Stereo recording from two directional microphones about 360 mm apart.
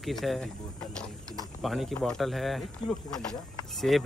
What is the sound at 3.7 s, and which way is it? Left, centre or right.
Speech, centre.